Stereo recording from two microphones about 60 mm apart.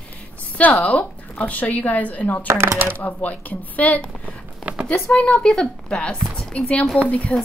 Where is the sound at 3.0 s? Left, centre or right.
Left.